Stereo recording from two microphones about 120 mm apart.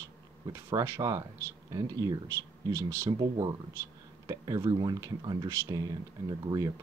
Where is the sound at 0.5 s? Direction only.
25° right (ahead or behind).